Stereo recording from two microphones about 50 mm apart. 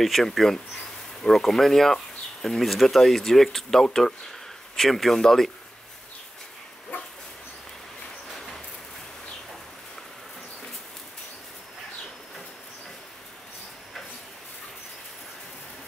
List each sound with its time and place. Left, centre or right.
0.0 s speech: centre
6.9 s dog: left